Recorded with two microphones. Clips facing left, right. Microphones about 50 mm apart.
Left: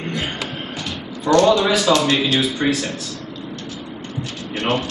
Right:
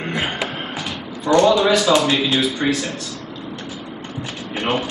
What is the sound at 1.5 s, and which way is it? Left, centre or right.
Speech, centre.